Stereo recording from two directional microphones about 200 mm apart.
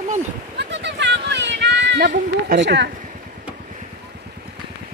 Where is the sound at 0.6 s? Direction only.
60° right (ahead or behind).